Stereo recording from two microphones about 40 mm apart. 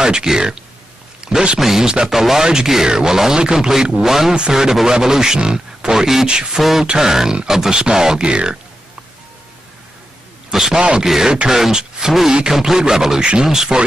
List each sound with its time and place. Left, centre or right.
0.0 s speech: centre
1.6 s a man's voice: centre
6.2 s speech: right
6.6 s a man's voice: centre; by 8.5 s right
10.5 s a man's voice: centre
10.8 s a man's voice: right